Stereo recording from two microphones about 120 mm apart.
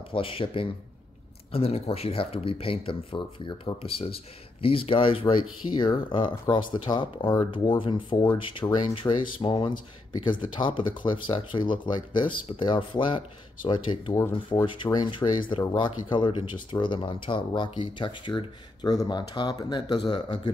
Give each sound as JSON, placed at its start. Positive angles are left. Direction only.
{"t": 0.1, "sound": "speech", "side_deg": 50}